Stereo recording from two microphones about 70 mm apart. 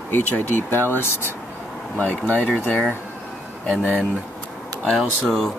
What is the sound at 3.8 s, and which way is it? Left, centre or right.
Speech, centre.